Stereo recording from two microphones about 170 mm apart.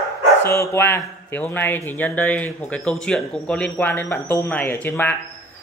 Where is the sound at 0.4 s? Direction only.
15° left (ahead or behind).